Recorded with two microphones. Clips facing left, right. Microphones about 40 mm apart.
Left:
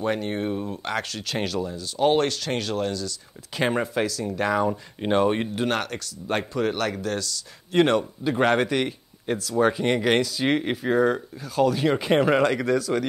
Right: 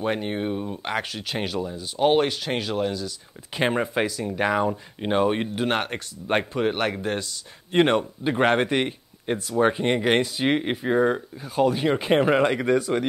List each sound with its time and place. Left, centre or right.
0.0 s speech: centre
4.6 s speech: centre
5.7 s speech: right